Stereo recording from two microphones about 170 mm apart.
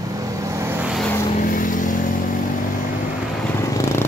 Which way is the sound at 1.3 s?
50° left (ahead or behind).